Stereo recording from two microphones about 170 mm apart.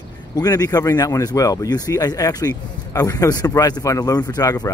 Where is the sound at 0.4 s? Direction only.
20° left (ahead or behind).